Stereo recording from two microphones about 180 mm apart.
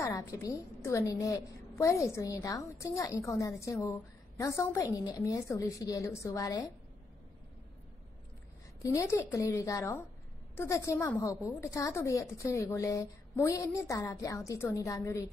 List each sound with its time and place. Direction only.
0.0 s a woman's voice: 15° left (ahead or behind)
8.8 s a woman's voice: 15° left (ahead or behind)